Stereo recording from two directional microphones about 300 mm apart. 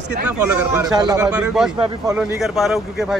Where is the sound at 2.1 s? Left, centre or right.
Centre.